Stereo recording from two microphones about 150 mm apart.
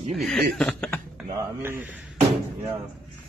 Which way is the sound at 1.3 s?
15° right (ahead or behind).